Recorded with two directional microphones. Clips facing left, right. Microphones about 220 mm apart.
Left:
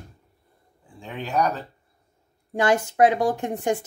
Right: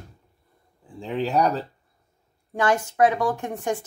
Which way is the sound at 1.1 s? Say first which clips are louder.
Right 3 dB; 30° right (ahead or behind).